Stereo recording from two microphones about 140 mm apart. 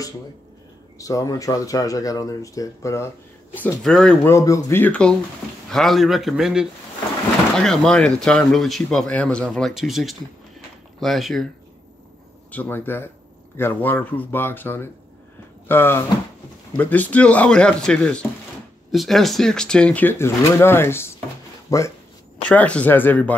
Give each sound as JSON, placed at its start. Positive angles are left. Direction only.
{"t": 0.9, "sound": "speech", "side_deg": 25}
{"t": 3.5, "sound": "speech", "side_deg": 10}
{"t": 4.3, "sound": "speech", "side_deg": 20}
{"t": 12.4, "sound": "speech", "side_deg": 10}
{"t": 22.5, "sound": "speech", "side_deg": 10}